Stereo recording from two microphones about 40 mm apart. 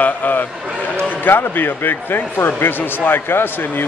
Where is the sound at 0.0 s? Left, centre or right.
Left.